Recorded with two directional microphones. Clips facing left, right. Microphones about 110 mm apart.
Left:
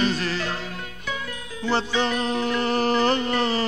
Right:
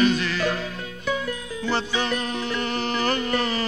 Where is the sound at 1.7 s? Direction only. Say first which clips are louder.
Left 2 dB; 30° left (ahead or behind).